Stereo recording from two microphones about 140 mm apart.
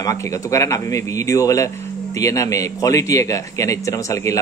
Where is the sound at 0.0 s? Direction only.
25° left (ahead or behind).